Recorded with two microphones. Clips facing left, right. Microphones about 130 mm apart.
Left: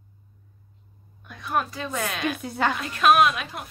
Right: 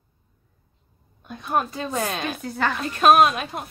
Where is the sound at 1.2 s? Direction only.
25° right (ahead or behind).